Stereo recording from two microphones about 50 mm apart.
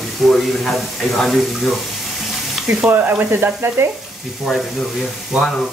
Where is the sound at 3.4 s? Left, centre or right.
Right.